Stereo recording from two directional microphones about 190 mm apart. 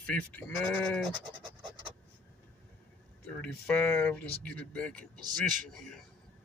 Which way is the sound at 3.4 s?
5° left (ahead or behind).